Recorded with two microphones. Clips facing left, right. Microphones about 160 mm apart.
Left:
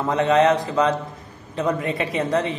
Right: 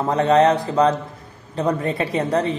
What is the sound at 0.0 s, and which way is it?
A woman's voice, 35° right (ahead or behind).